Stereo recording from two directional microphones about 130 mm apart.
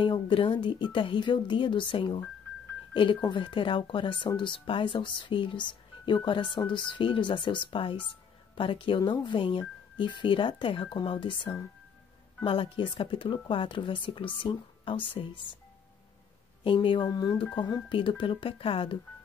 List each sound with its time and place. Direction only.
0.0 s speech: 40° left (ahead or behind)
16.6 s speech: 45° left (ahead or behind)
17.1 s speech: 30° left (ahead or behind)